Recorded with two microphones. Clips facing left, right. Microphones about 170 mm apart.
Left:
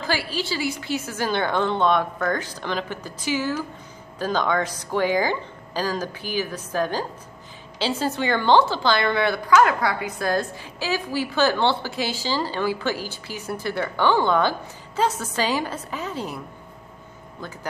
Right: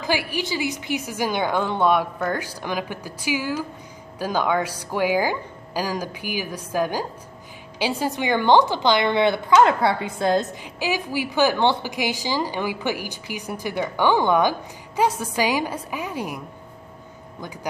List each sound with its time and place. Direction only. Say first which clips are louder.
0.0 s a woman's voice: right 2 dB; 15° right (ahead or behind)